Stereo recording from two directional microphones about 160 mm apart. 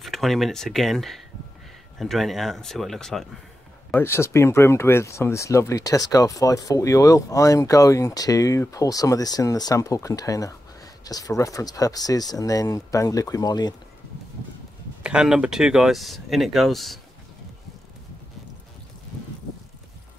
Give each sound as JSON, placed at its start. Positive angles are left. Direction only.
{"t": 0.0, "sound": "speech", "side_deg": 0}
{"t": 3.9, "sound": "speech", "side_deg": 15}
{"t": 15.0, "sound": "speech", "side_deg": -5}